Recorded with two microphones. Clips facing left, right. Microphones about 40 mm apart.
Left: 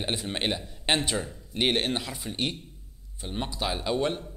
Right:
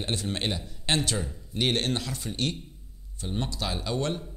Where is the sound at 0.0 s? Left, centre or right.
Centre.